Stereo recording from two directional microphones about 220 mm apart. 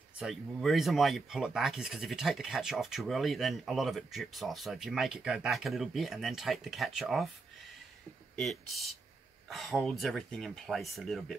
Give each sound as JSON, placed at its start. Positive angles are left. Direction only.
{"t": 0.2, "sound": "speech", "side_deg": 0}
{"t": 8.4, "sound": "speech", "side_deg": 0}